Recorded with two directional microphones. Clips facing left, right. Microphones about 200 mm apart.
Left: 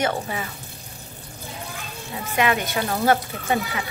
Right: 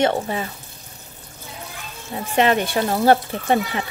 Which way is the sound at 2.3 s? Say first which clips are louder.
Right 4 dB; 30° right (ahead or behind).